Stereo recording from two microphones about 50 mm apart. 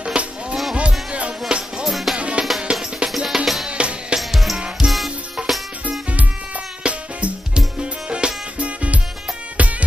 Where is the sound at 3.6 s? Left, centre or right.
Right.